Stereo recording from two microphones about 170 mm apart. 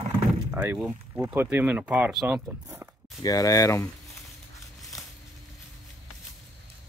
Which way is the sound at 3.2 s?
20° left (ahead or behind).